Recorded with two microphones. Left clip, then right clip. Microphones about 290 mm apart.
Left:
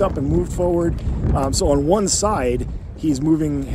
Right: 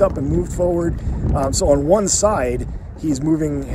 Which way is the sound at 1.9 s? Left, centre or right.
Centre.